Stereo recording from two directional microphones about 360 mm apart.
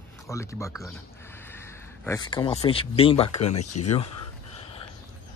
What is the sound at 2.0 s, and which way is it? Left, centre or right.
Speech, centre.